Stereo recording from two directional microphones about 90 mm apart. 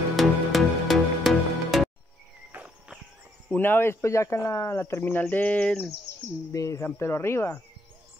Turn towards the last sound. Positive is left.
turn(degrees=30)  # may be behind; listen again after turning